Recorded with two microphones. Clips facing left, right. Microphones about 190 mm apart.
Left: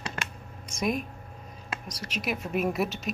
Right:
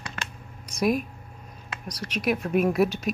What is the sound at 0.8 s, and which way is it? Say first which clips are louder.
Speech: right 5 dB; 5° right (ahead or behind).